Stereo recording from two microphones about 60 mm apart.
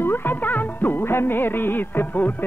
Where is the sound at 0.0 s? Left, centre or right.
Left.